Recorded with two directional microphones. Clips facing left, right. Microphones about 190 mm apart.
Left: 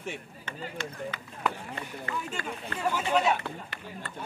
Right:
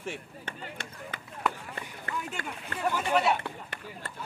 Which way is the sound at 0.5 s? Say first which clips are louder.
Left 5 dB; 55° right (ahead or behind).